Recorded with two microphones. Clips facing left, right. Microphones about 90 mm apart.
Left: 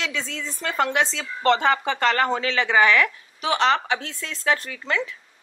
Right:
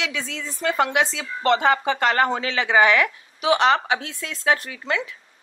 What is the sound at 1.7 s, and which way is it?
Speech, 35° right (ahead or behind).